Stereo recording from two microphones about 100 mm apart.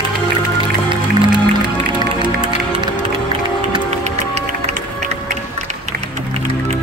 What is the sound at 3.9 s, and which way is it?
Music, 90° right.